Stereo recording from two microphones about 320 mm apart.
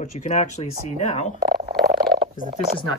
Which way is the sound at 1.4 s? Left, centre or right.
Right.